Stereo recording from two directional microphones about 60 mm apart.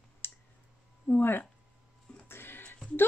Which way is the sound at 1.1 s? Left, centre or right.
Left.